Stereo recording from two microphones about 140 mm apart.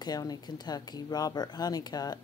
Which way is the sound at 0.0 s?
30° left (ahead or behind).